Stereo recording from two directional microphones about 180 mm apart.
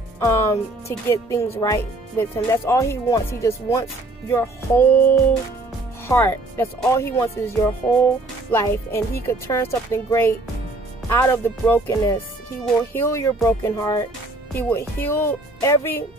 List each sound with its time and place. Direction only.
0.2 s speech: 15° left (ahead or behind)